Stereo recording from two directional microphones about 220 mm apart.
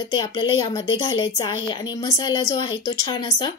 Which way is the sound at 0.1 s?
20° left (ahead or behind).